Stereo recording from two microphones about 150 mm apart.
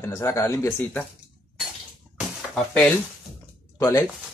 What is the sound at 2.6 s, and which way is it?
Speech, 10° left (ahead or behind).